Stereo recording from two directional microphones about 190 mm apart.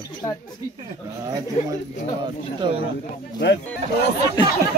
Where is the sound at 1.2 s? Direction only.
20° right (ahead or behind).